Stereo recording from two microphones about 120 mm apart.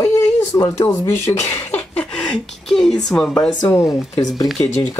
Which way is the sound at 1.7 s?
10° left (ahead or behind).